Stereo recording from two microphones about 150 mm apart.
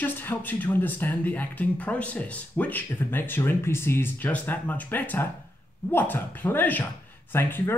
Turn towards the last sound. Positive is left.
turn(degrees=15)  # may be behind; listen again after turning